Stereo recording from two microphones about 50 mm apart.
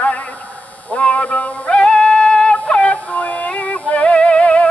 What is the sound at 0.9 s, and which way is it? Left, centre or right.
Synthetic singing, left.